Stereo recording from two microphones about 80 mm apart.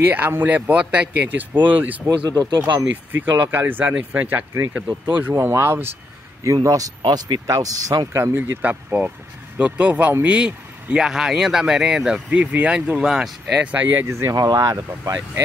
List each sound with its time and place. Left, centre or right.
0.0 s speech: right
2.1 s speech: right
3.1 s speech: right
6.4 s speech: right
7.1 s speech: right
7.4 s speech: right
8.1 s speech: right
8.6 s speech: centre
12.3 s speech: centre
14.0 s speech: right
14.3 s speech: right